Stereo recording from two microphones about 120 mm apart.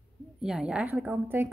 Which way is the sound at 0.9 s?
20° right (ahead or behind).